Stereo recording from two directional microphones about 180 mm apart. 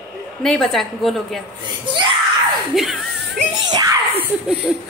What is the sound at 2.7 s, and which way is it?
Speech, centre (ahead or behind).